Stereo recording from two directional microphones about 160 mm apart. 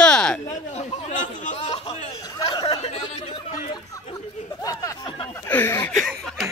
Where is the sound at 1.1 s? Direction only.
50° left (ahead or behind).